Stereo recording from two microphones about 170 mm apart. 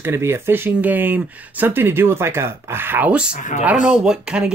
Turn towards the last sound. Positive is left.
turn(degrees=-5)  # may be behind; listen again after turning